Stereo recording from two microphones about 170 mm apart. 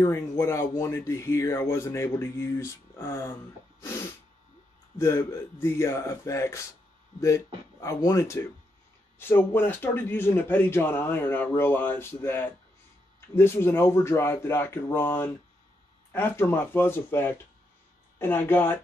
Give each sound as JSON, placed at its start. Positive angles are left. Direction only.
{"t": 0.0, "sound": "speech", "side_deg": 15}
{"t": 4.9, "sound": "speech", "side_deg": 15}